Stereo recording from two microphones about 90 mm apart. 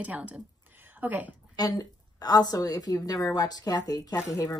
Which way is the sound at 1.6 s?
45° left (ahead or behind).